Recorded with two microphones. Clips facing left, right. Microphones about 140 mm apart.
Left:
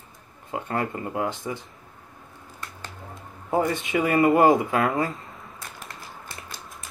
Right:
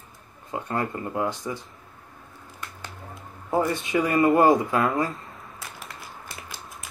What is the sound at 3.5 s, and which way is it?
Speech, 20° left (ahead or behind).